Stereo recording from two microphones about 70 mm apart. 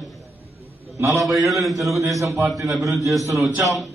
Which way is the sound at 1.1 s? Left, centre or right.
Centre.